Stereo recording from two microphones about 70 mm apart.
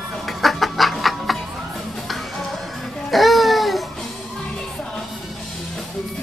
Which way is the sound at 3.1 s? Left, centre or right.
Centre.